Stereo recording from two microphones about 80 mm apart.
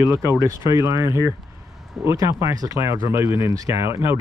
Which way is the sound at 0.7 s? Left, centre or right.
Right.